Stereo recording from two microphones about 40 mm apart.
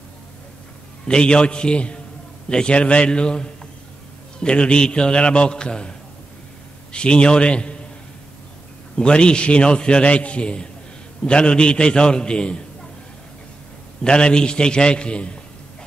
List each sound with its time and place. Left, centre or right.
1.0 s a man's voice: left
8.9 s a man's voice: left
14.0 s a man's voice: left